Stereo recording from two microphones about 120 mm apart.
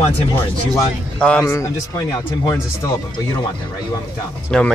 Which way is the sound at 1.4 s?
25° left (ahead or behind).